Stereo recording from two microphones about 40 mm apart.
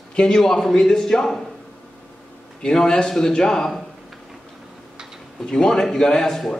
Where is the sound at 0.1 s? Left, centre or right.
Left.